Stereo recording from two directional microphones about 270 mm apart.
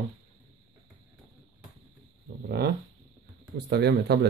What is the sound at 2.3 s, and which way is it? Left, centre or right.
Speech, right.